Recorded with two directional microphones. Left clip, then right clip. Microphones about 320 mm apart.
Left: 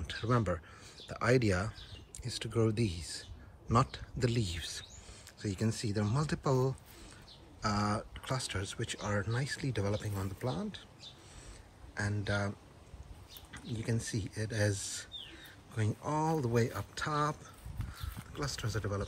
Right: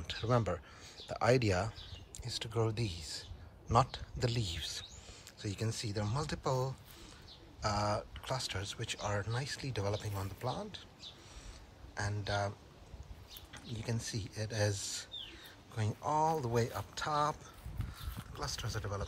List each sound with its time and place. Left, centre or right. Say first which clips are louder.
0.0 s speech: even; centre
11.9 s speech: left 2 dB; centre